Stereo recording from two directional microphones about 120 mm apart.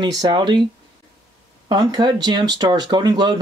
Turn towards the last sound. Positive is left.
turn(degrees=-40)  # may be behind; listen again after turning